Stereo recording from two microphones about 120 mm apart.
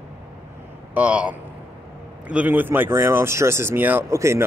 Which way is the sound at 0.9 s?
10° right (ahead or behind).